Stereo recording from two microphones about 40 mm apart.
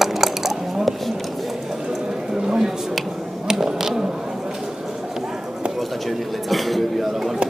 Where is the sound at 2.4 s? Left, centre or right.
Centre.